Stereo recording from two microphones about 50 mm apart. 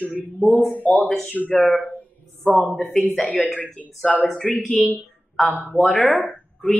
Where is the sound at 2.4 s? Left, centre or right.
Right.